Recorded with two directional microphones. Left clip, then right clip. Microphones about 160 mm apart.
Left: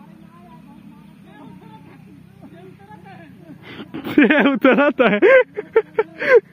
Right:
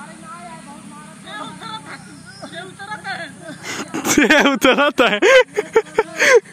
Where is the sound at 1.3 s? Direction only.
25° right (ahead or behind).